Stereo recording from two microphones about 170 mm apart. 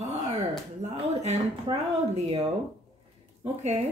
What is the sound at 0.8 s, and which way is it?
Speech, 40° right (ahead or behind).